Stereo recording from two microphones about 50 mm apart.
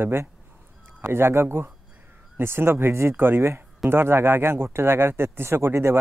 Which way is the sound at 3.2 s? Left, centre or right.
Right.